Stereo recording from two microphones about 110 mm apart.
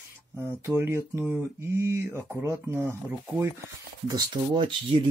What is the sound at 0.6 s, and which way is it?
Speech, 25° right (ahead or behind).